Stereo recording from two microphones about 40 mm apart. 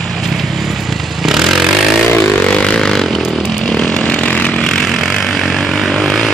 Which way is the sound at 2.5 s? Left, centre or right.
Left.